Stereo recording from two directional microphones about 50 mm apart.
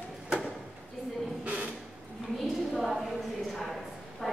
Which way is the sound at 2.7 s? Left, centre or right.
Centre.